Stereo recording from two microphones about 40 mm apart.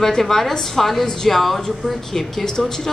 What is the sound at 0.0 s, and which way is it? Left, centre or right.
A woman's voice, centre.